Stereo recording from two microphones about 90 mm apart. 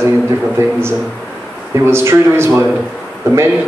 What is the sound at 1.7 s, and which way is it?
A man's voice, 30° right (ahead or behind).